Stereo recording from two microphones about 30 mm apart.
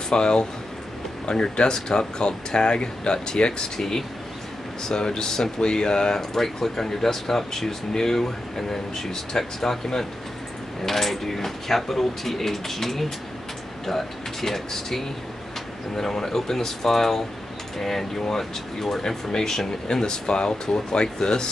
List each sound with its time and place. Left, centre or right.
0.1 s speech: left
4.8 s speech: left
6.1 s speech: centre; by 21.5 s left